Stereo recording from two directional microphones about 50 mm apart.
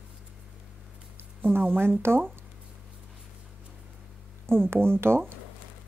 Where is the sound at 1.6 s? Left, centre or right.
Right.